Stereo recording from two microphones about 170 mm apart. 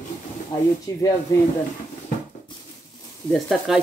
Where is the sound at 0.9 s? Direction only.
20° left (ahead or behind).